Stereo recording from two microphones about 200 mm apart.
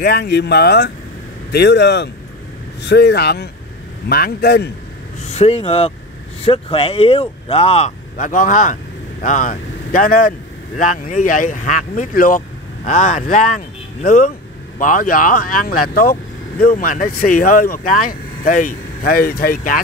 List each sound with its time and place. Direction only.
0.0 s speech: 50° left (ahead or behind)
5.2 s speech: 30° left (ahead or behind)